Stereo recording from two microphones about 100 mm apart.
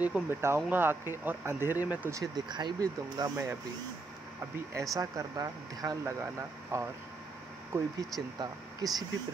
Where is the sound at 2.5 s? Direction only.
45° right (ahead or behind).